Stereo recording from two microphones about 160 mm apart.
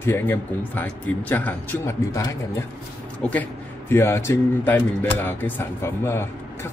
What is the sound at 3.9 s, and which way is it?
Speech, 15° left (ahead or behind).